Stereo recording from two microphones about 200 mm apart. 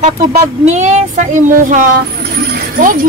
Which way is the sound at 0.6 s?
35° right (ahead or behind).